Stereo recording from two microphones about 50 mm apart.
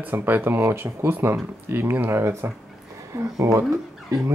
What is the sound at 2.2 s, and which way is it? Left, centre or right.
Speech, right.